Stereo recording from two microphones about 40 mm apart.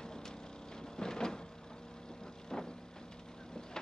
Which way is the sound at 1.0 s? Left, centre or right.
Centre.